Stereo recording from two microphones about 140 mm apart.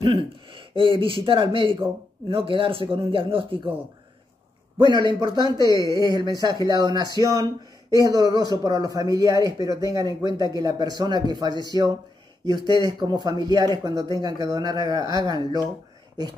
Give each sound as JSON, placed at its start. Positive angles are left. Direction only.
{"t": 0.0, "sound": "speech", "side_deg": -40}
{"t": 5.6, "sound": "speech", "side_deg": 25}
{"t": 5.9, "sound": "a man's voice", "side_deg": -25}